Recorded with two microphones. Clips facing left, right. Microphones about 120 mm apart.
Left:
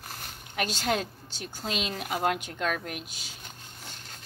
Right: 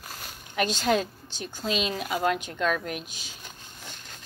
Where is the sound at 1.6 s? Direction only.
50° left (ahead or behind).